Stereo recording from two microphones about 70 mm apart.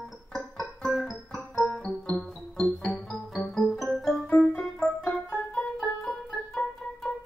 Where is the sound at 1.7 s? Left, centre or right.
Left.